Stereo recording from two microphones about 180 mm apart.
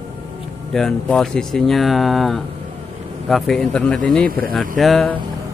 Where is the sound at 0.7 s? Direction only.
Centre (ahead or behind).